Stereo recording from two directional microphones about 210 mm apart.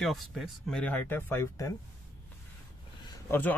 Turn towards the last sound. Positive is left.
turn(degrees=10)  # may be behind; listen again after turning